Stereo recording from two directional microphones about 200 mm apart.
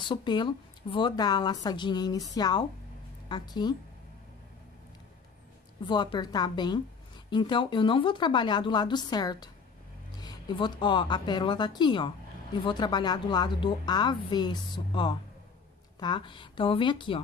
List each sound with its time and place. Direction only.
0.1 s a woman's voice: 25° left (ahead or behind)
5.9 s a woman's voice: 20° left (ahead or behind)